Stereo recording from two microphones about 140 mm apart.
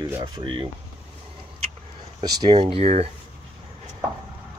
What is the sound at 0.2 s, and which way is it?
Speech, 35° right (ahead or behind).